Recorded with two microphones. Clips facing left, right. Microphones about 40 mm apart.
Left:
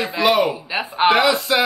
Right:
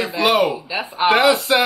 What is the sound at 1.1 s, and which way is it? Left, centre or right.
Music, right.